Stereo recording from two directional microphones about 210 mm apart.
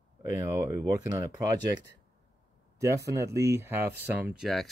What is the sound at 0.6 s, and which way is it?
Speech, 15° right (ahead or behind).